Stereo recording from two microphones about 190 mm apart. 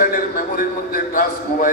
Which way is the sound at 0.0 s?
45° left (ahead or behind).